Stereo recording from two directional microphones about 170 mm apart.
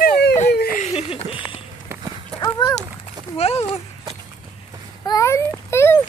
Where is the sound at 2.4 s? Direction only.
20° left (ahead or behind).